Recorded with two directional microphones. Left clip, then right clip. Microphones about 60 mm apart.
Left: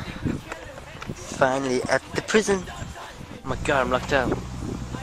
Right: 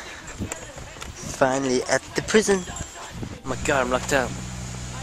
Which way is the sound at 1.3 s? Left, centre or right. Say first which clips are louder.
Right 1 dB; right.